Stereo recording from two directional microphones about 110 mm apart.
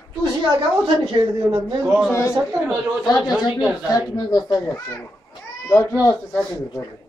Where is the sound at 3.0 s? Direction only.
40° left (ahead or behind).